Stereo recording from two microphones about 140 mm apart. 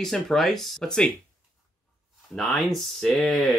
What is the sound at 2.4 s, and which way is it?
Speech, centre (ahead or behind).